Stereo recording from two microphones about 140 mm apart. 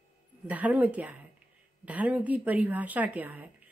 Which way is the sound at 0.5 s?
10° right (ahead or behind).